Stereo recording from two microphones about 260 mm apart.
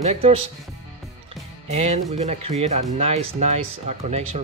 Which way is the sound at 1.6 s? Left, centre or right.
Right.